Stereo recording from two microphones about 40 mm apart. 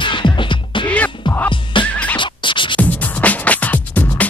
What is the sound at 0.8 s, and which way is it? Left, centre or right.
Music, left.